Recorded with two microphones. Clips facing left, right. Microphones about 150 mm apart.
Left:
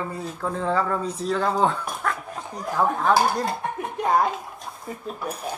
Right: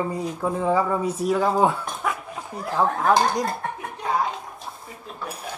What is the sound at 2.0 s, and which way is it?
Dog, 10° right (ahead or behind).